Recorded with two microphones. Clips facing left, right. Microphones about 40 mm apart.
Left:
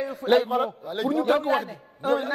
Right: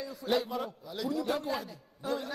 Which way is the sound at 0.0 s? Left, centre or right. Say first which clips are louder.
Left 10 dB; left.